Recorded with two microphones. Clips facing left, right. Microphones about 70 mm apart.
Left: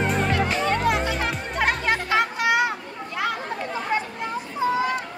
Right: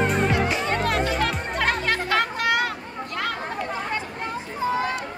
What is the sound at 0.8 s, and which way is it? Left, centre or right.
Music, centre.